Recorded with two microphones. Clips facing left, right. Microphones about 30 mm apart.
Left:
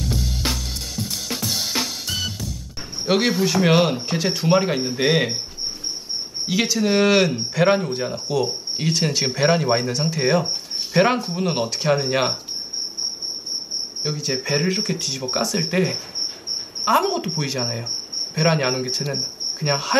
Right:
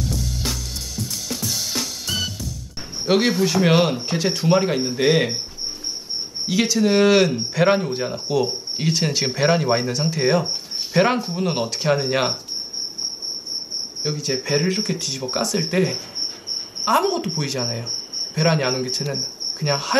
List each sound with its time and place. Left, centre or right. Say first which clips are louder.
0.1 s drum kit: left 2 dB; left
2.0 s music: right 1 dB; centre
3.1 s speech: right 1 dB; centre
6.4 s speech: right 2 dB; centre
14.0 s speech: right 1 dB; centre